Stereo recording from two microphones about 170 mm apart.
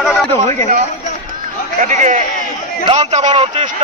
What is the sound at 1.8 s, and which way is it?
Speech, 45° right (ahead or behind).